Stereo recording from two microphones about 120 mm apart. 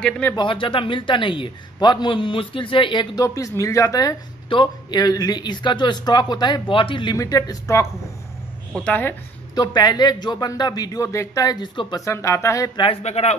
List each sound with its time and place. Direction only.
0.0 s a woman's voice: 10° left (ahead or behind)
0.4 s a man's voice: 45° left (ahead or behind)
3.2 s speech: 25° left (ahead or behind)
4.5 s a man's voice: 40° left (ahead or behind)
7.2 s speech: 30° left (ahead or behind)
8.7 s a woman's voice: 10° left (ahead or behind)
9.6 s a man's voice: 35° left (ahead or behind)
11.6 s a man's voice: 40° left (ahead or behind)
12.0 s speech: 25° left (ahead or behind)
13.0 s speech: 65° left (ahead or behind)